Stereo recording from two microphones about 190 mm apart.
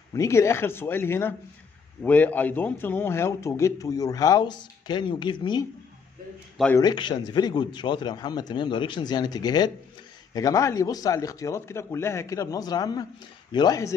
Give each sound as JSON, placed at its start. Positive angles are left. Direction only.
{"t": 0.1, "sound": "a man's voice", "side_deg": 15}
{"t": 6.8, "sound": "a man's voice", "side_deg": 25}